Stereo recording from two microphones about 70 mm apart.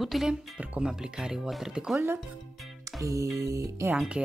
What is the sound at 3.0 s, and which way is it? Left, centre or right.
Speech, right.